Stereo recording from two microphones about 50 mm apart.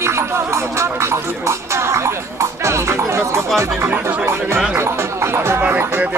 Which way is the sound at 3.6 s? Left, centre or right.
Right.